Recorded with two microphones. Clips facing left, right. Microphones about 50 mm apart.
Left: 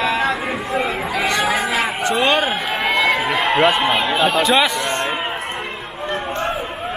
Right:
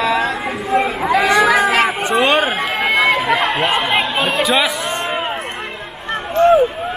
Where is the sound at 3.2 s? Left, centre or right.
Right.